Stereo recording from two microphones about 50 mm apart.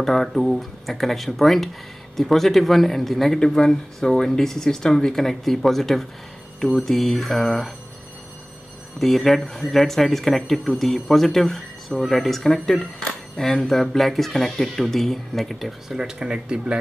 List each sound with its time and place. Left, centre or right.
0.0 s speech: centre
9.0 s speech: centre
16.0 s speech: centre